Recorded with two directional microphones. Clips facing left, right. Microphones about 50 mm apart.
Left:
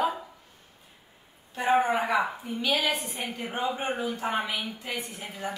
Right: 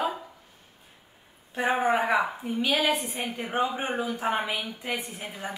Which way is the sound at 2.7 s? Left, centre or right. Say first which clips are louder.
Right 2 dB; centre.